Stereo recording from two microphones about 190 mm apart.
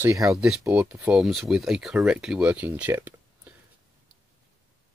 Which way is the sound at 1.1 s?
Centre (ahead or behind).